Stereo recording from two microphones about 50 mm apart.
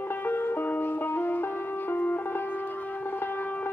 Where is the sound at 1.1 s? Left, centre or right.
Left.